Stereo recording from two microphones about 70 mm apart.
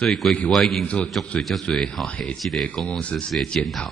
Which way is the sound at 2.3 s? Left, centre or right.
Centre.